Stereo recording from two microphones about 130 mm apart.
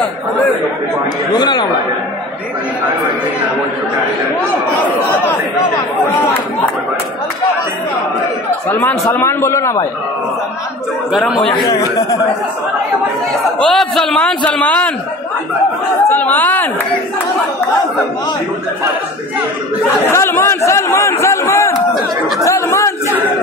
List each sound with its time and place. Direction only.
1.3 s speech: 35° left (ahead or behind)
8.8 s a man's voice: 15° left (ahead or behind)
11.5 s speech: 30° left (ahead or behind)
13.4 s a man's voice: 5° left (ahead or behind)
16.1 s a man's voice: 15° left (ahead or behind)
20.1 s a man's voice: 20° left (ahead or behind)